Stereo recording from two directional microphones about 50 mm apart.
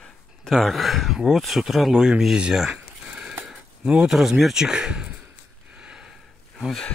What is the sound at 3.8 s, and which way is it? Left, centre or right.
Speech, right.